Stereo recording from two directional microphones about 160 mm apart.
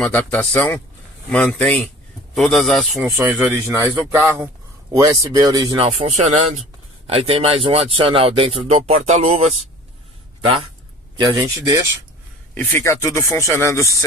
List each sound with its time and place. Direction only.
0.0 s a man's voice: 10° left (ahead or behind)
3.2 s speech: 10° right (ahead or behind)
5.9 s speech: 45° right (ahead or behind)
11.3 s speech: 20° right (ahead or behind)
12.5 s speech: 15° left (ahead or behind)